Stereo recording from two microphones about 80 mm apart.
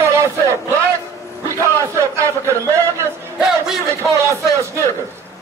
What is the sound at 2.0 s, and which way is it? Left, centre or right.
Speech, right.